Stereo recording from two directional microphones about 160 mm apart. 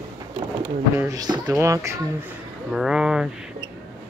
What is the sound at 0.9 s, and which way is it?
Speech, 20° right (ahead or behind).